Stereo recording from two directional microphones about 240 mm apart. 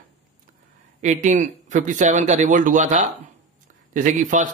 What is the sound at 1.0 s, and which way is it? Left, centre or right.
Speech, right.